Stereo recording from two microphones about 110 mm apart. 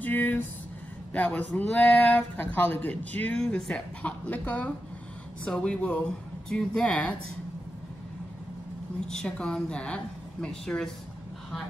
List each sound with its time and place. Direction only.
0.0 s a sound: 15° left (ahead or behind)
1.1 s speech: 15° left (ahead or behind)
9.0 s speech: 5° left (ahead or behind)